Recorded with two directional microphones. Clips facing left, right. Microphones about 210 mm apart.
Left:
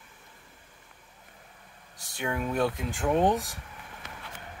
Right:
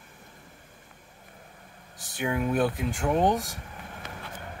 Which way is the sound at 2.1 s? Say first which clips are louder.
Right 3 dB; 5° right (ahead or behind).